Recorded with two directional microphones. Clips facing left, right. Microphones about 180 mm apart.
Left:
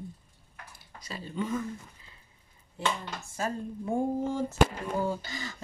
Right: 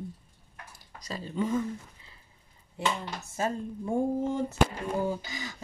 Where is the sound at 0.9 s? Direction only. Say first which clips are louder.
Right 3 dB; 40° right (ahead or behind).